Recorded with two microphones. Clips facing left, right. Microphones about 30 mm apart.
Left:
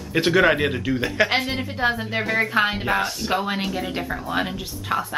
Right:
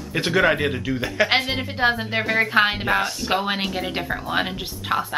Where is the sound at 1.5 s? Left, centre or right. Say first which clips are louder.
Right 2 dB; right.